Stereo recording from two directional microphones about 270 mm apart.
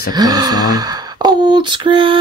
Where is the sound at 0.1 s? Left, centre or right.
Centre.